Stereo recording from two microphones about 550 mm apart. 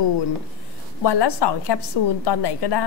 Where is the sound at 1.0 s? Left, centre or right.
Left.